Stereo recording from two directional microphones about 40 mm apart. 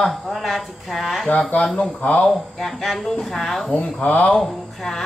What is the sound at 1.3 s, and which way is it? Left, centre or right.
Speech, left.